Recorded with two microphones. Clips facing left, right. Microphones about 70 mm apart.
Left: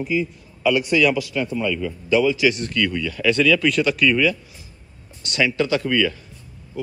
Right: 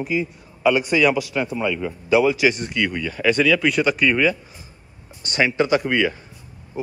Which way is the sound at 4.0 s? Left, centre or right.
Right.